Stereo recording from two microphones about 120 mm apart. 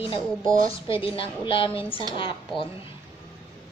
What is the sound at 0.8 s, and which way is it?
A woman's voice, 50° left (ahead or behind).